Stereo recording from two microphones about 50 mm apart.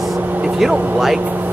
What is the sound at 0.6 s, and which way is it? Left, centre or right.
Speech, centre.